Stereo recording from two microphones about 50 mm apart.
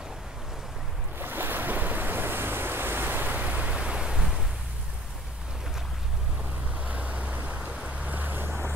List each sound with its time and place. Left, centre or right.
1.2 s waves: right
3.7 s pink noise: centre
6.8 s waves: right